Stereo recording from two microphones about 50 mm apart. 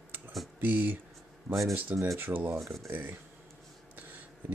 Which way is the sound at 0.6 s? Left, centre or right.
Right.